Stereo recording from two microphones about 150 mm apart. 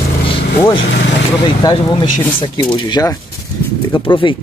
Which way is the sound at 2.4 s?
30° left (ahead or behind).